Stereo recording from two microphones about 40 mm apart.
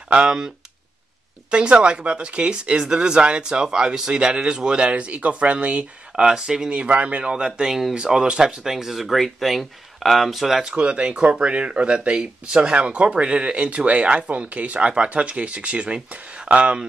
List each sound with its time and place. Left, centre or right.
0.1 s speech: right
1.5 s speech: right
5.0 s speech: right
6.2 s speech: centre
6.7 s speech: right
7.2 s speech: right; by 10.6 s centre
10.7 s speech: right